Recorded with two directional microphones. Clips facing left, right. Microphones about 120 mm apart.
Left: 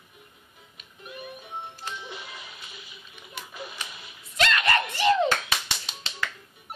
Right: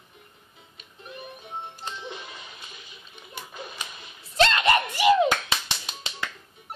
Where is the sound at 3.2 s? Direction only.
20° right (ahead or behind).